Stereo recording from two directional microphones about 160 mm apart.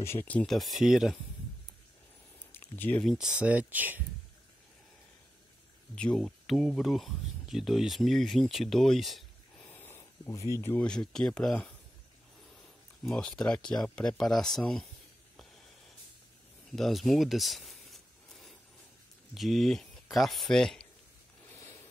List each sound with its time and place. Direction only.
0.0 s speech: 15° left (ahead or behind); by 1.1 s centre (ahead or behind)
2.3 s speech: 10° left (ahead or behind); by 4.0 s 10° right (ahead or behind)
5.9 s speech: 5° left (ahead or behind)
9.6 s speech: 15° left (ahead or behind)
13.0 s speech: 5° left (ahead or behind)
16.7 s a sound: centre (ahead or behind)
19.3 s speech: centre (ahead or behind)
21.5 s a sound: 15° left (ahead or behind)